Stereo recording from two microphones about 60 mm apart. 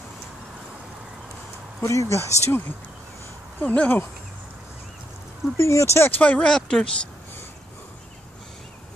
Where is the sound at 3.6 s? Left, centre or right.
Left.